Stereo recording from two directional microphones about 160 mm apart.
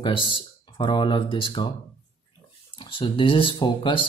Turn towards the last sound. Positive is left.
turn(degrees=30)  # may be behind; listen again after turning